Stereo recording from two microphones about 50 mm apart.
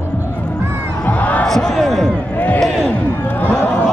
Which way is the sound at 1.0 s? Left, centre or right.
Left.